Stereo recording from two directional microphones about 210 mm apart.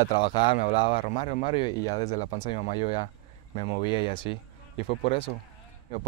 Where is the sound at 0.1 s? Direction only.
20° left (ahead or behind).